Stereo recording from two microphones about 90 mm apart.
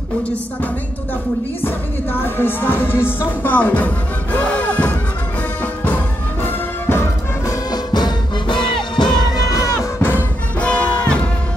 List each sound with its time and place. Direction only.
2.1 s music: 25° left (ahead or behind)
7.4 s music: 50° left (ahead or behind)
9.4 s music: 40° left (ahead or behind)
10.0 s music: 20° left (ahead or behind)